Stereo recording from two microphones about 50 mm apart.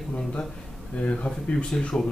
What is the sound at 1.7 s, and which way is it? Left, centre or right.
Speech, centre.